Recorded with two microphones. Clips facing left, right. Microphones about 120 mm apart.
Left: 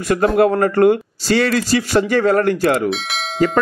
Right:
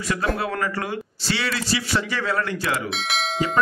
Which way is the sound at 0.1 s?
50° left (ahead or behind).